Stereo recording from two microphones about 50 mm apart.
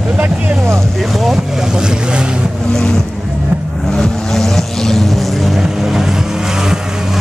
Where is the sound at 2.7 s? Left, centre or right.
Centre.